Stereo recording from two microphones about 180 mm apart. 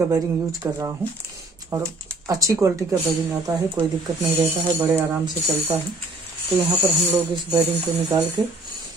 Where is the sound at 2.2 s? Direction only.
20° right (ahead or behind).